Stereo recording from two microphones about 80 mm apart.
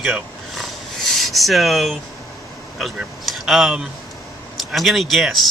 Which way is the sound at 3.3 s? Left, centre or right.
Centre.